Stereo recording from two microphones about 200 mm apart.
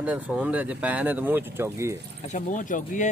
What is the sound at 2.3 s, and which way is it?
Speech, 40° left (ahead or behind).